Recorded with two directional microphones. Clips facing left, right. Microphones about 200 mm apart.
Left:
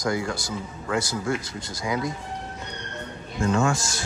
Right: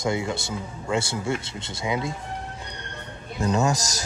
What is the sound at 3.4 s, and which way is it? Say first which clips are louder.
Speech: even; 20° right (ahead or behind).